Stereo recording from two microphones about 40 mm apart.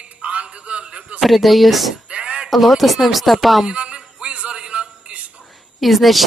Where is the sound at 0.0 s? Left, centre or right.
Right.